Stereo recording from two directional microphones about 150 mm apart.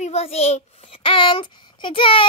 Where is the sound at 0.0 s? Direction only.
45° left (ahead or behind).